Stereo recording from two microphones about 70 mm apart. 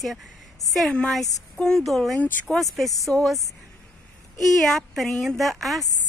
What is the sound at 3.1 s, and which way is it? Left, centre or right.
Speech, left.